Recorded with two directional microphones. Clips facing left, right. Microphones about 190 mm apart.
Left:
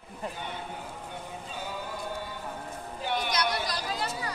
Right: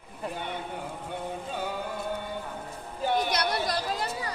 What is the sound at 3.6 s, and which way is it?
Chatter, 55° right (ahead or behind).